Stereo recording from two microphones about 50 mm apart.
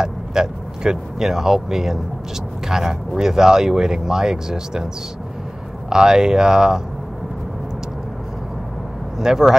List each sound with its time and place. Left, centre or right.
0.0 s speech: centre
5.9 s speech: centre
9.2 s speech: centre